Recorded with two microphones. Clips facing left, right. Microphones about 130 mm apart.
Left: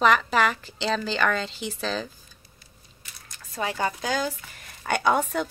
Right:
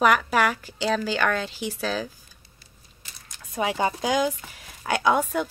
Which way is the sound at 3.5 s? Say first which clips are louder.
Right 3 dB; 20° right (ahead or behind).